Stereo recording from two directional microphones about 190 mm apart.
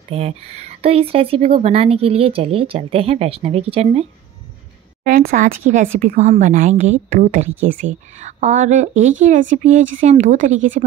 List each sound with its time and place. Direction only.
0.1 s speech: 30° right (ahead or behind)
5.0 s a woman's voice: 45° right (ahead or behind)